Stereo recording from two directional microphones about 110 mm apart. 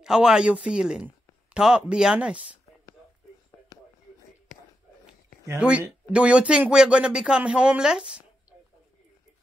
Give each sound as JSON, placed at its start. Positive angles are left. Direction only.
{"t": 0.0, "sound": "speech", "side_deg": -5}
{"t": 5.6, "sound": "speech", "side_deg": -10}